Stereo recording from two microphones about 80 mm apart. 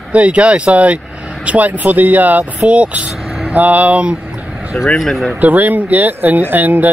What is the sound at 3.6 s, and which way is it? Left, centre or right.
Speech, centre.